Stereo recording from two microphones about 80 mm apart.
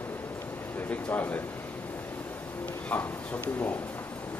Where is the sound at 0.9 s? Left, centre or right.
Left.